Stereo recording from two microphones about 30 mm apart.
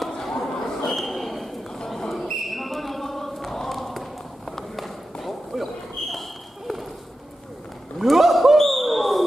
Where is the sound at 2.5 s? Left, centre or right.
Centre.